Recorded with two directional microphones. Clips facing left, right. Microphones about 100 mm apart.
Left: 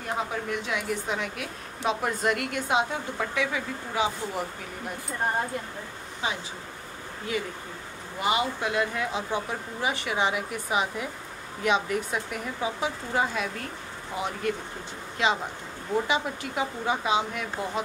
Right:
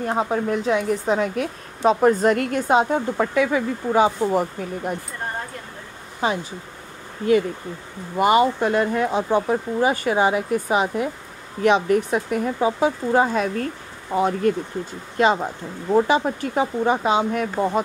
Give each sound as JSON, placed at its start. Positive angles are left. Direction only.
{"t": 0.1, "sound": "speech", "side_deg": -40}
{"t": 6.2, "sound": "speech", "side_deg": -45}
{"t": 8.2, "sound": "speech", "side_deg": -50}